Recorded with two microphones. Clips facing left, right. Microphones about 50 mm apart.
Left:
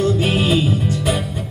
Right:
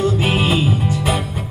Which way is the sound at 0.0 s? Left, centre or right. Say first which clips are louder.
Even; right.